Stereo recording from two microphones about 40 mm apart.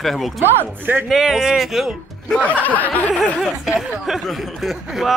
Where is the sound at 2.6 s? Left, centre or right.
Left.